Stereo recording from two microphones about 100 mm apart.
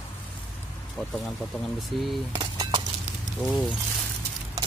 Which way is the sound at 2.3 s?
45° right (ahead or behind).